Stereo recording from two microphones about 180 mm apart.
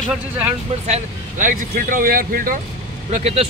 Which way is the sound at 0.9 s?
45° right (ahead or behind).